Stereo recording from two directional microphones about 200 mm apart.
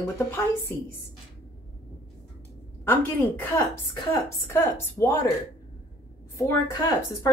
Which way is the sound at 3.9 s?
15° left (ahead or behind).